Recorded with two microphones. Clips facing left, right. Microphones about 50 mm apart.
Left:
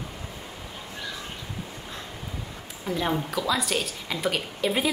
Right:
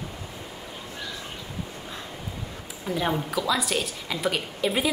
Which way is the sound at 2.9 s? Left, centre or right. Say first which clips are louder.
Even; centre.